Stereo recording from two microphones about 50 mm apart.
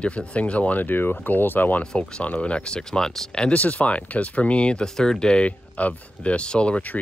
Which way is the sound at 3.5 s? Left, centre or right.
Left.